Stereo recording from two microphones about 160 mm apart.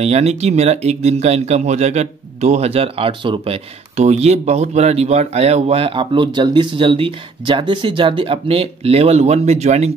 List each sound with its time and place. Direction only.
0.0 s speech: 45° right (ahead or behind)